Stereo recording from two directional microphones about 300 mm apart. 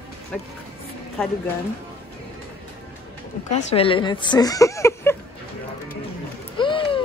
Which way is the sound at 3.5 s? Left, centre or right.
Centre.